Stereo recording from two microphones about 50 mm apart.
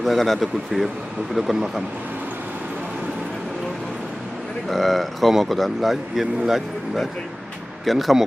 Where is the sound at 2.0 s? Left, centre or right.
Right.